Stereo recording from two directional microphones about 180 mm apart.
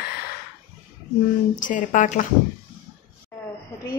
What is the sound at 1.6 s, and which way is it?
Speech, 45° left (ahead or behind).